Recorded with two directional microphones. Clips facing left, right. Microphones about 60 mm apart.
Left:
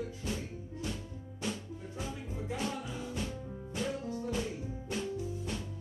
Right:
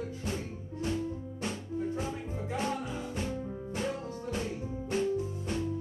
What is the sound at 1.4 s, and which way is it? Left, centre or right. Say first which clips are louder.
Music: right 3 dB; right.